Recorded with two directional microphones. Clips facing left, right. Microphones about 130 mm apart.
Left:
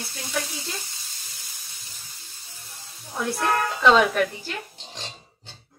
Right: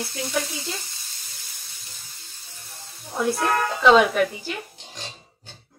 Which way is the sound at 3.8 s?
5° right (ahead or behind).